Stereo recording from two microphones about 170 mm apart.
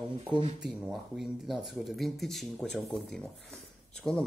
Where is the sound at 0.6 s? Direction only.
5° right (ahead or behind).